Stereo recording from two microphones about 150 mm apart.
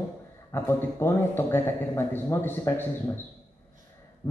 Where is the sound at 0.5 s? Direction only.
20° left (ahead or behind).